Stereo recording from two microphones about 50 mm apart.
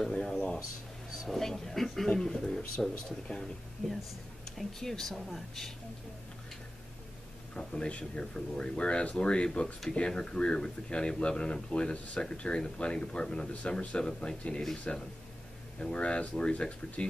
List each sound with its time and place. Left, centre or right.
0.0 s speech: centre
1.3 s speech: centre
4.6 s speech: centre
7.5 s speech: centre